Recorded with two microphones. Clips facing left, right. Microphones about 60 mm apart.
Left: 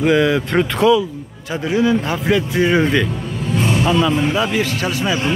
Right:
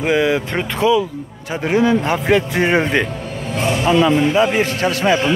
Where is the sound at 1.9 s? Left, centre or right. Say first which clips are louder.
Right 2 dB; right.